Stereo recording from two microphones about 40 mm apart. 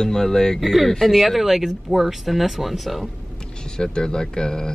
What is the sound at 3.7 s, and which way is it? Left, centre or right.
Speech, centre.